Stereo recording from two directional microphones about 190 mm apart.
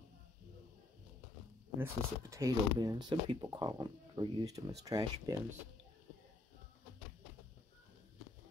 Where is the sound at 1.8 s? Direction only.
15° right (ahead or behind).